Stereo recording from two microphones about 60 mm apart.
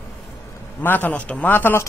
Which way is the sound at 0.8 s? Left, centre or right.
Left.